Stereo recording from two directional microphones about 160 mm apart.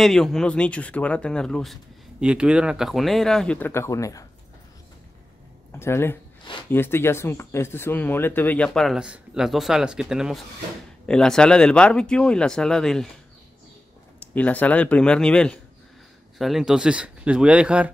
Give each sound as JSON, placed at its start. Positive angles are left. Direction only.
{"t": 0.0, "sound": "speech", "side_deg": 0}
{"t": 5.7, "sound": "speech", "side_deg": 15}
{"t": 14.2, "sound": "speech", "side_deg": 10}